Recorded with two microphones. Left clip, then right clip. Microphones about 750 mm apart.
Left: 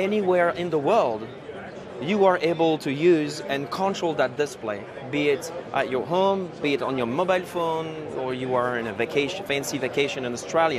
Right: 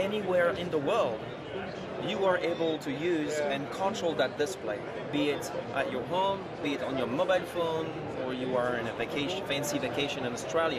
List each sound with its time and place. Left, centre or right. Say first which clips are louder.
0.0 s speech: left 6 dB; left
3.9 s speech: left 5 dB; left